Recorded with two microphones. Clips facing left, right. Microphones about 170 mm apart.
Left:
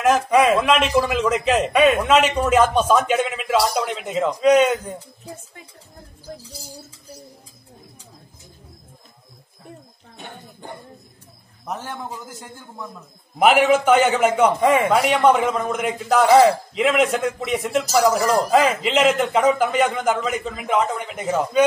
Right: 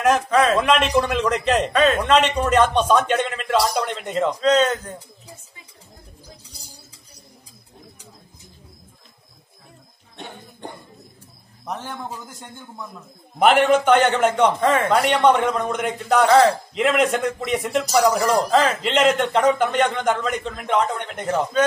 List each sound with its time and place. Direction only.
0.3 s a man's voice: 15° left (ahead or behind)
0.6 s a man's voice: centre (ahead or behind)
11.6 s a man's voice: 5° left (ahead or behind)
16.3 s a man's voice: 15° left (ahead or behind)
16.7 s a man's voice: centre (ahead or behind)